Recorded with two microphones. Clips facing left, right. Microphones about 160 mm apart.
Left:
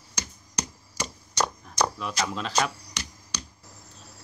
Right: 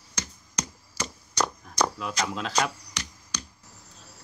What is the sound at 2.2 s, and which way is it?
Speech, centre (ahead or behind).